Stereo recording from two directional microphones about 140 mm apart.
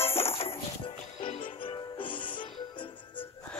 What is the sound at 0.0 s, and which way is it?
Music, 15° left (ahead or behind).